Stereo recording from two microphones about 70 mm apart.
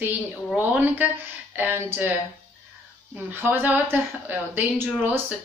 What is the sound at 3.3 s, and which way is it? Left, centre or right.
Speech, right.